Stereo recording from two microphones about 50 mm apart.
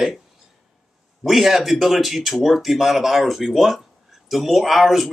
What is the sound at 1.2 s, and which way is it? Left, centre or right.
Speech, centre.